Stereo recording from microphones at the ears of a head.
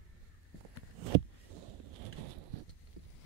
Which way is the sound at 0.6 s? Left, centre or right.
Right.